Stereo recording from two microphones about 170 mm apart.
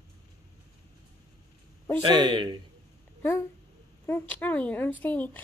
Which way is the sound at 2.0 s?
30° right (ahead or behind).